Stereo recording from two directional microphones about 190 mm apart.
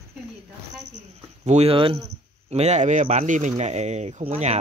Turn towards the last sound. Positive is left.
turn(degrees=-35)  # may be behind; listen again after turning